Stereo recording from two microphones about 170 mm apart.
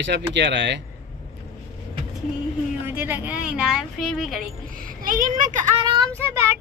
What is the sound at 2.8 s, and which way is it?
Speech, 10° right (ahead or behind).